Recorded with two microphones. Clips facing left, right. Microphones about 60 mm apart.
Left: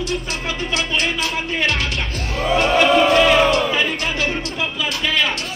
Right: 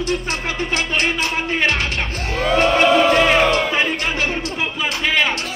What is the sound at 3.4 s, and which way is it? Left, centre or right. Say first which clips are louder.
Music: even; right.